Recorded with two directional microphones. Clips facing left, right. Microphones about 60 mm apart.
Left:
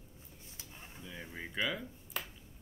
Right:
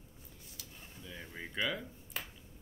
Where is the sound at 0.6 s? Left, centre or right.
Left.